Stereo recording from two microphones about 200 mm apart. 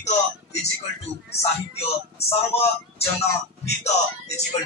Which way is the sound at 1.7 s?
30° left (ahead or behind).